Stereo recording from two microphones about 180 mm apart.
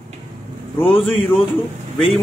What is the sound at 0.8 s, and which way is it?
Speech, centre (ahead or behind).